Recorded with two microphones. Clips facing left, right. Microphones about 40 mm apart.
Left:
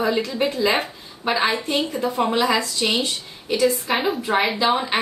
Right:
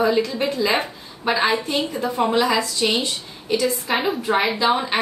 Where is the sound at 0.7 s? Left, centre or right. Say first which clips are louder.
Right 1 dB; centre.